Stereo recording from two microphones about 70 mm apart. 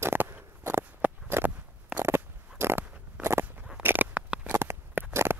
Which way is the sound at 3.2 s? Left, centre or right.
Right.